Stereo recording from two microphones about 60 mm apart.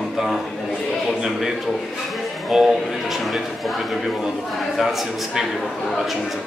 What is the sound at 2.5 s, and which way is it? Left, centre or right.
A man's voice, centre.